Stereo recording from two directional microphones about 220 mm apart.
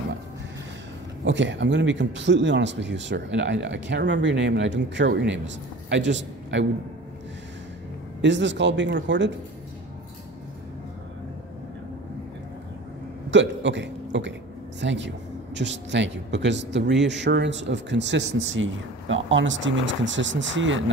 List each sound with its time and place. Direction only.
1.2 s a man's voice: 55° right (ahead or behind)
8.2 s speech: 55° right (ahead or behind)
13.3 s a man's voice: 55° right (ahead or behind)